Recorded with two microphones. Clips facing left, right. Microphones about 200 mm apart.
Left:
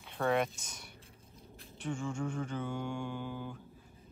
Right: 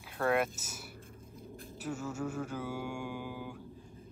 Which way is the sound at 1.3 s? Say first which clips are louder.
Right 7 dB; 50° right (ahead or behind).